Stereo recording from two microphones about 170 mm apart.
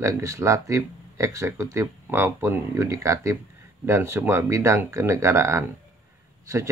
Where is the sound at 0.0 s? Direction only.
15° right (ahead or behind).